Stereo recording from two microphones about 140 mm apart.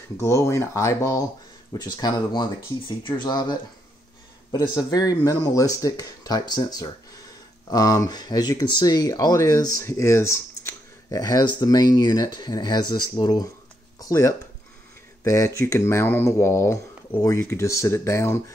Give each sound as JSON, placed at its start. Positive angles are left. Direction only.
{"t": 0.2, "sound": "speech", "side_deg": 20}
{"t": 13.9, "sound": "a sound", "side_deg": 25}
{"t": 15.2, "sound": "speech", "side_deg": 20}